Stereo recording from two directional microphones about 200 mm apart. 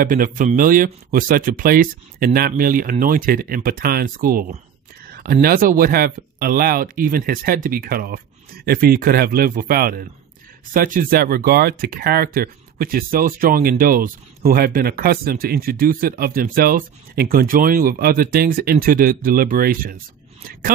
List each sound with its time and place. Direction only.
0.0 s speech: 40° right (ahead or behind)